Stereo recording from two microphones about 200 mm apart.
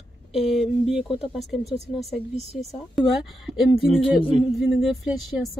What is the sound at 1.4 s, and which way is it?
Speech, centre (ahead or behind).